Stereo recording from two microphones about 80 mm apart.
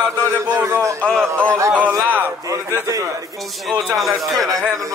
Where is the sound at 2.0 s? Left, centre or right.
Right.